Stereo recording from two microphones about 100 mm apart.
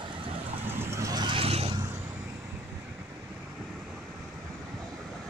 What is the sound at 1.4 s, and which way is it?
Vehicle, 90° right.